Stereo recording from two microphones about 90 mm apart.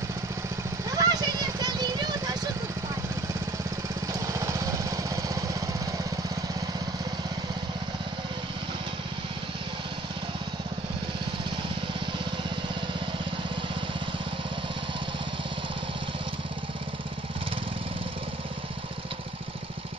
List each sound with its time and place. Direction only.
0.8 s vehicle: 45° right (ahead or behind)
4.1 s lawn mower: 35° right (ahead or behind)